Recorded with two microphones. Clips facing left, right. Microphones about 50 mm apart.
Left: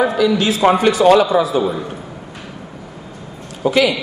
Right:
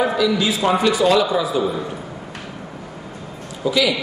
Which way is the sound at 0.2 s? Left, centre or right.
Left.